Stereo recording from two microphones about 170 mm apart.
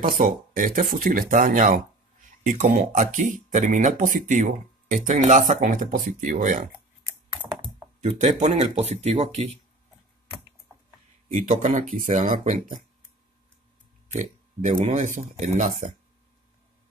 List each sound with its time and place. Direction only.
0.0 s speech: 55° right (ahead or behind)
8.0 s speech: 45° right (ahead or behind)
11.3 s speech: 50° right (ahead or behind)
14.1 s speech: 50° right (ahead or behind)